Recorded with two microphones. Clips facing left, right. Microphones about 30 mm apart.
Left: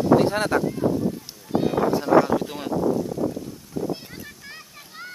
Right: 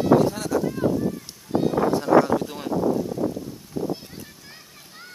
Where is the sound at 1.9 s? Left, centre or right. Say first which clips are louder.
Even; centre.